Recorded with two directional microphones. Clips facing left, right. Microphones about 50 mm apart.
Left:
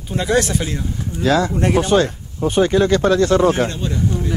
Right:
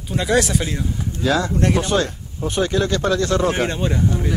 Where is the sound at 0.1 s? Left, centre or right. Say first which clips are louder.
Left 1 dB; centre.